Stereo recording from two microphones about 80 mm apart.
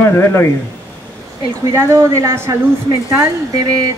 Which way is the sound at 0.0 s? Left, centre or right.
Left.